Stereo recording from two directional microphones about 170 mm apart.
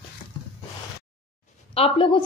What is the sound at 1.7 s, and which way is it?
Speech, 35° left (ahead or behind).